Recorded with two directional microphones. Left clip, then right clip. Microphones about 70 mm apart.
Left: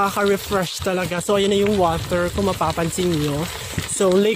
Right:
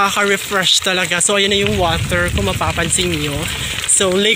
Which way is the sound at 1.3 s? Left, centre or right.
Left.